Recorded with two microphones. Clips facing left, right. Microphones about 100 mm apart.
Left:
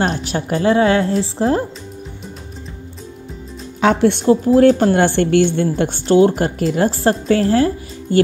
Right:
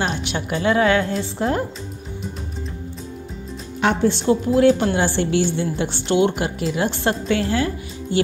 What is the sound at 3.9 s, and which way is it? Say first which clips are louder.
Speech: left 4 dB; 65° left (ahead or behind).